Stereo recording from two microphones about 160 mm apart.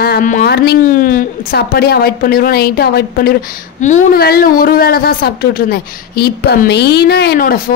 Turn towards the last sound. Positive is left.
turn(degrees=65)  # may be behind; listen again after turning